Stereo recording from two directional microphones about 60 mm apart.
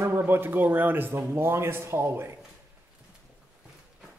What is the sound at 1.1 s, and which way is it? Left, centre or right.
A man's voice, right.